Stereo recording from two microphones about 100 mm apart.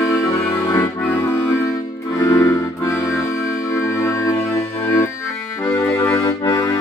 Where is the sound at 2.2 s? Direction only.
35° left (ahead or behind).